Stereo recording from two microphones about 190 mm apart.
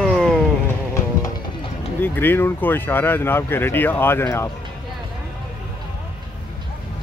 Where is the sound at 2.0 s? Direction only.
10° left (ahead or behind).